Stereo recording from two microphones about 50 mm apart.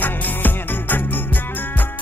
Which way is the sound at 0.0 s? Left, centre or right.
Left.